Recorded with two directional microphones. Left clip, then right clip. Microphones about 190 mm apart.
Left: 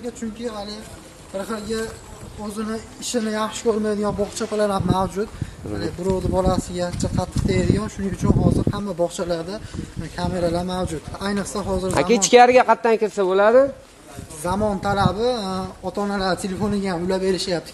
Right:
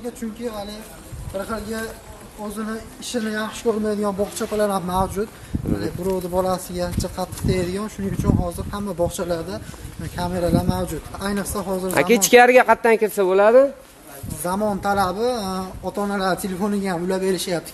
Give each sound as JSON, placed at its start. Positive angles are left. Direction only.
{"t": 0.0, "sound": "speech", "side_deg": 5}
{"t": 1.4, "sound": "speech", "side_deg": 55}
{"t": 3.6, "sound": "speech", "side_deg": 15}
{"t": 4.2, "sound": "speech", "side_deg": 5}
{"t": 8.6, "sound": "speech", "side_deg": 0}
{"t": 14.4, "sound": "speech", "side_deg": 15}